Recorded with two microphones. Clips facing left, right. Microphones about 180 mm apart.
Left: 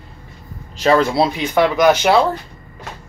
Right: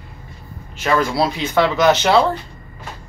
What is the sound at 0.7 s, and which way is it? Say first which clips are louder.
Speech: left 4 dB; 30° left (ahead or behind).